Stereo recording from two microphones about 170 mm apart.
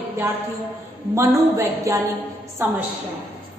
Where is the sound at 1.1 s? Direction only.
15° right (ahead or behind).